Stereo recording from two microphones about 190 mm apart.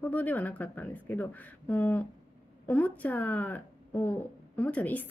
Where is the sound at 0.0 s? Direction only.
10° left (ahead or behind).